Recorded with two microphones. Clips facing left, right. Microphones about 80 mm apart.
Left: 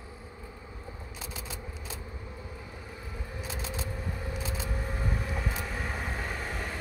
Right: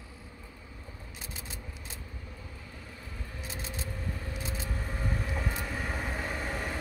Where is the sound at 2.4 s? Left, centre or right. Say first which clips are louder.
Left 4 dB; centre.